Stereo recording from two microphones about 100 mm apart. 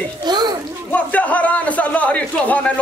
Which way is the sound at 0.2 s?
45° right (ahead or behind).